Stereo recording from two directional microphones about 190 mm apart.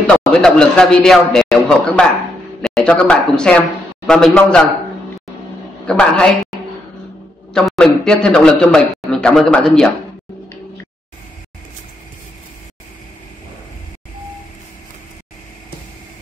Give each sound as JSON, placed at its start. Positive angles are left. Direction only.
{"t": 0.0, "sound": "a man's voice", "side_deg": 5}
{"t": 5.9, "sound": "a woman's voice", "side_deg": 5}